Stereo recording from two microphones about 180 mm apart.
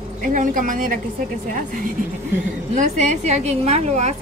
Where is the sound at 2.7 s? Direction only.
40° right (ahead or behind).